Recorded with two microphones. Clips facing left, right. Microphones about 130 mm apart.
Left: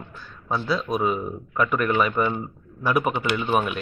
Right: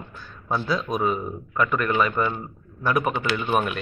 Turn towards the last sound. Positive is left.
turn(degrees=5)  # may be behind; listen again after turning